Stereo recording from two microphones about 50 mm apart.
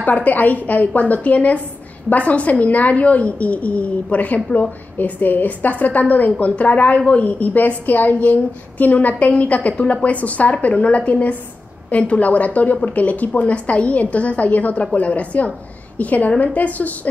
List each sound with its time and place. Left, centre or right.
0.0 s a woman's voice: left